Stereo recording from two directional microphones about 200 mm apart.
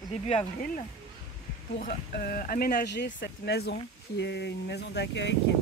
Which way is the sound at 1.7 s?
50° left (ahead or behind).